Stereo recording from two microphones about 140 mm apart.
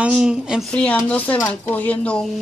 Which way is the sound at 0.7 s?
10° left (ahead or behind).